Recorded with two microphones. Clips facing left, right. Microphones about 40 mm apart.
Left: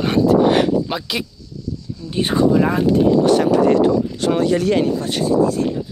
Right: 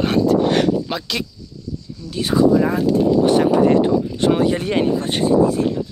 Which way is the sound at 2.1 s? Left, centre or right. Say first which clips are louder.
Right 1 dB; left.